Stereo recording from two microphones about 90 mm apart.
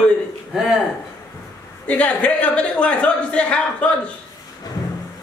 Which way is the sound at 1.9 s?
15° left (ahead or behind).